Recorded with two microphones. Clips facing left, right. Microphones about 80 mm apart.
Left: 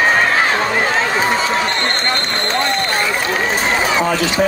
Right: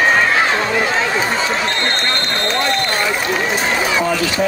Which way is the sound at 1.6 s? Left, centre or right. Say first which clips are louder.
Left 1 dB; centre.